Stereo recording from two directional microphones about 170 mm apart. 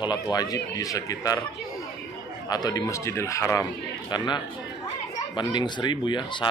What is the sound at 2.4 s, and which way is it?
A man's voice, 20° left (ahead or behind).